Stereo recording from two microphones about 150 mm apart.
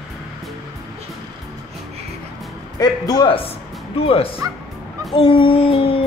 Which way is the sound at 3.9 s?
40° left (ahead or behind).